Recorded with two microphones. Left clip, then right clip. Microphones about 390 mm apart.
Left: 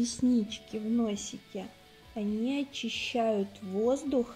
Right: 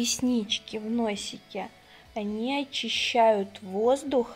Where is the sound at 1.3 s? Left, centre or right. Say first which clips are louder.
Right 6 dB; right.